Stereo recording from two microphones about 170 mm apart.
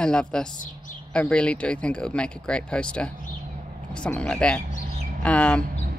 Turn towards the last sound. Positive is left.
turn(degrees=5)  # may be behind; listen again after turning